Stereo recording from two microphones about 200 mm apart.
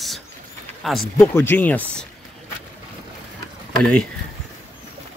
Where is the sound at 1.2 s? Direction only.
10° left (ahead or behind).